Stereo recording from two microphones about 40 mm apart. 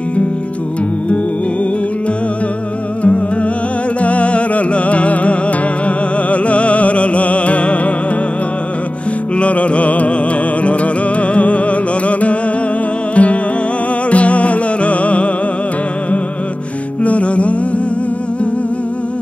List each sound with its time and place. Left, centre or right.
4.0 s music: left
9.4 s music: left
17.0 s music: left